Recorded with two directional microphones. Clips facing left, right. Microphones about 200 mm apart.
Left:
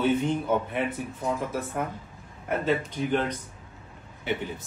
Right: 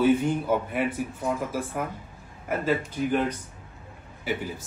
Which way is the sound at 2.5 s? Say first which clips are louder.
Even; 5° right (ahead or behind).